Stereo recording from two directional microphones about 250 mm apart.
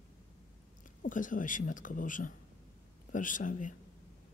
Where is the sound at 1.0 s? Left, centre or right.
Left.